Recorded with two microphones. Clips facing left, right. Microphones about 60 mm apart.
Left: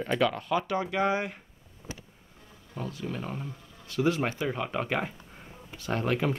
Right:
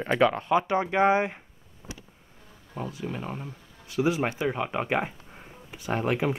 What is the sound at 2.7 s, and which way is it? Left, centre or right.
Speech, centre.